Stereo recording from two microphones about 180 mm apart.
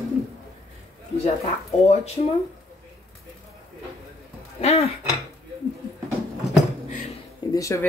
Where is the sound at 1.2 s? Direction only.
35° left (ahead or behind).